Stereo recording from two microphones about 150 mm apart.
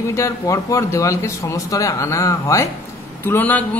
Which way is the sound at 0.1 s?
20° left (ahead or behind).